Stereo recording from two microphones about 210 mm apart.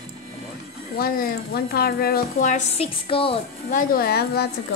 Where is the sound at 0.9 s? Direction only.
45° left (ahead or behind); by 3.3 s 25° left (ahead or behind).